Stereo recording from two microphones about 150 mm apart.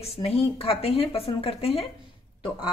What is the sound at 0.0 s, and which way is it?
Speech, 40° left (ahead or behind).